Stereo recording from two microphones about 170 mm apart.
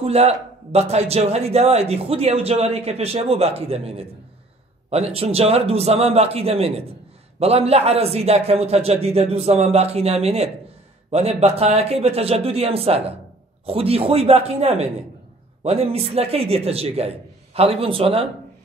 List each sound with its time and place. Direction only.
0.0 s a man's voice: 40° right (ahead or behind)